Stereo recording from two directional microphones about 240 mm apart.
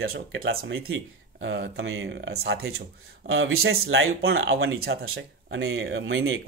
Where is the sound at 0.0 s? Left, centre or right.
Right.